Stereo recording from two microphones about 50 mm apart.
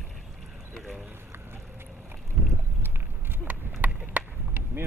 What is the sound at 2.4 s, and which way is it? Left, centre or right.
Vehicle, right.